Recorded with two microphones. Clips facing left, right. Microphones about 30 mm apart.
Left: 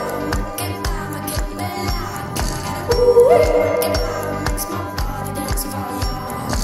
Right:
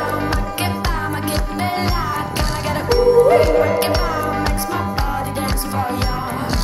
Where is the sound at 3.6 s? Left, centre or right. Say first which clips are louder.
Right 1 dB; right.